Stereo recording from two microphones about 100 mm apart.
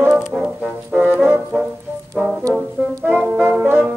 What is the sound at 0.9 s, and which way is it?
Brass instrument, 15° right (ahead or behind).